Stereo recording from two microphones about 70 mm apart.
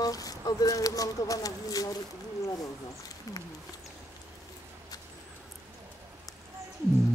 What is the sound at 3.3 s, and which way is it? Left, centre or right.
Speech, left.